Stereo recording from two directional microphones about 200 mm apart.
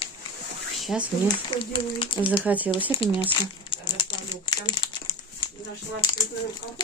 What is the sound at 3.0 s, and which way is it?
Speech, 25° left (ahead or behind).